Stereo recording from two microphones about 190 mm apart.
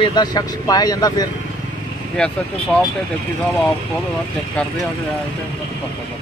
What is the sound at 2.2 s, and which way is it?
Speech, 5° left (ahead or behind).